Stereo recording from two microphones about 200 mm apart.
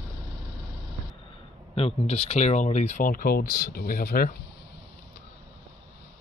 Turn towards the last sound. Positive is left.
turn(degrees=50)  # may be behind; listen again after turning